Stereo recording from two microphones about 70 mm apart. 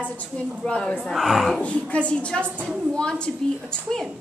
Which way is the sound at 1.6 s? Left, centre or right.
Centre.